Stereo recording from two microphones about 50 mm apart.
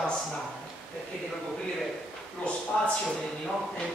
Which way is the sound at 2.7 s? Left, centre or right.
Centre.